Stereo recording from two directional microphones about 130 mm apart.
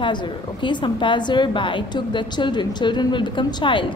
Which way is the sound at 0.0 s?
40° left (ahead or behind).